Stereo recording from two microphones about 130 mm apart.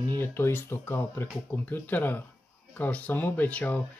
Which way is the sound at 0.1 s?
15° left (ahead or behind).